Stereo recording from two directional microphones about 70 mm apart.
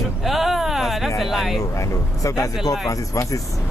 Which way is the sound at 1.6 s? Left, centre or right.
Left.